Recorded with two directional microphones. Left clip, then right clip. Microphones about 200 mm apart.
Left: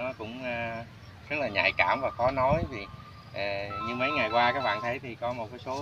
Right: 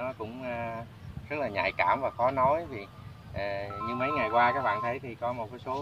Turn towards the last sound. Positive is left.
turn(degrees=-5)  # may be behind; listen again after turning